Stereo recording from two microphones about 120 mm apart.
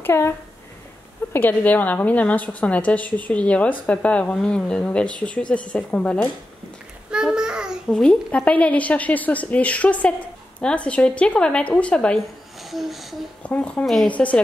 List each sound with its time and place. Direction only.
0.0 s speech: 20° left (ahead or behind)
1.3 s a woman's voice: 15° left (ahead or behind)
7.1 s babbling: 5° right (ahead or behind)
7.9 s a woman's voice: 5° left (ahead or behind)
12.6 s a sound: centre (ahead or behind)
13.4 s a woman's voice: 10° left (ahead or behind)